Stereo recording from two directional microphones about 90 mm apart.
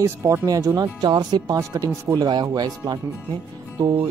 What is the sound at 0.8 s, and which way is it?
Speech, 55° right (ahead or behind).